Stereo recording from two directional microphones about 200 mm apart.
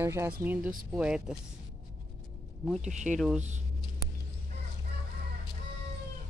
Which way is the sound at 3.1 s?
5° right (ahead or behind).